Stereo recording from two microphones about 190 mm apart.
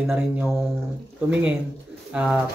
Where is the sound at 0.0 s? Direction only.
10° right (ahead or behind).